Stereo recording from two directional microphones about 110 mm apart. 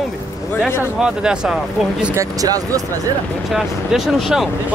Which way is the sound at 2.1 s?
30° right (ahead or behind).